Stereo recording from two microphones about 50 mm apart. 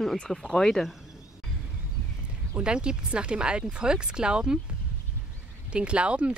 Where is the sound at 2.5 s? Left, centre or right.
Centre.